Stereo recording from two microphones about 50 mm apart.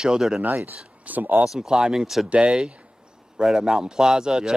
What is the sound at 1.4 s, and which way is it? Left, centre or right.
Speech, centre.